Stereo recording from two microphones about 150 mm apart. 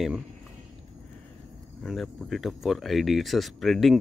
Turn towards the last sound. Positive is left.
turn(degrees=0)  # may be behind; listen again after turning